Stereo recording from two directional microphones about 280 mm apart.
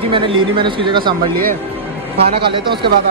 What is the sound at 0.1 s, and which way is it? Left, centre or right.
A man's voice, centre.